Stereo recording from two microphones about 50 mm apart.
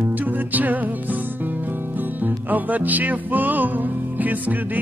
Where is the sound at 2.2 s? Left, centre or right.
Right.